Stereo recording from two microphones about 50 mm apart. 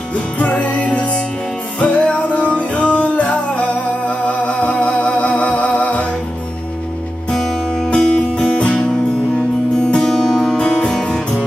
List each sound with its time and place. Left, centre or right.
0.1 s music: left
7.9 s music: centre